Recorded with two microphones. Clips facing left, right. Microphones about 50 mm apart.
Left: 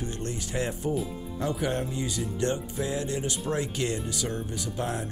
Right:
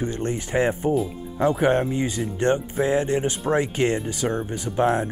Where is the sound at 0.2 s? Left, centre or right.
Right.